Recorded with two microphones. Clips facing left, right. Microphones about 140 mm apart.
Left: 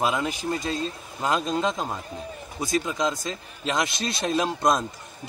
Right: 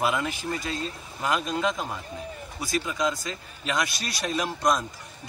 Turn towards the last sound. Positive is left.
turn(degrees=20)  # may be behind; listen again after turning